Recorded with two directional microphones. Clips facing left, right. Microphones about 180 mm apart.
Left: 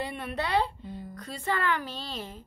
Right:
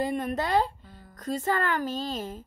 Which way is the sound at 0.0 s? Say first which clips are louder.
Right 5 dB; 45° right (ahead or behind).